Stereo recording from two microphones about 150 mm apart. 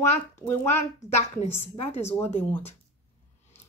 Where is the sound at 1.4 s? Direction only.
45° left (ahead or behind).